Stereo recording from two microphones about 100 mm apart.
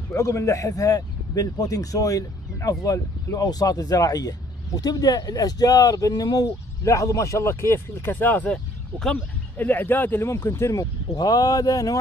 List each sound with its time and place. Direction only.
0.1 s a man's voice: 30° left (ahead or behind)